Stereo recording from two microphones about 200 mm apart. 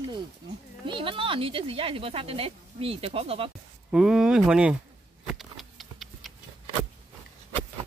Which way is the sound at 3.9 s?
5° right (ahead or behind).